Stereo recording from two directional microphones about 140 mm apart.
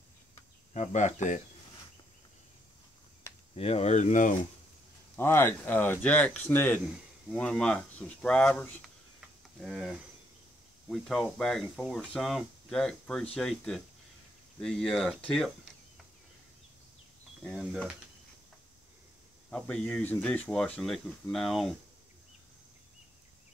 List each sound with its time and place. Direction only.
0.7 s speech: 60° left (ahead or behind)
3.5 s speech: 45° left (ahead or behind); by 4.4 s 65° left (ahead or behind)
5.1 s speech: 15° left (ahead or behind)
17.4 s speech: centre (ahead or behind)
19.5 s speech: 10° left (ahead or behind)